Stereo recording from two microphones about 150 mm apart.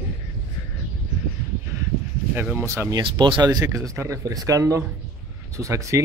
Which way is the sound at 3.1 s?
30° right (ahead or behind).